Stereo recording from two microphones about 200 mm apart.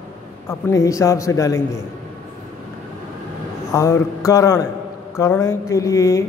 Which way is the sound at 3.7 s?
15° left (ahead or behind).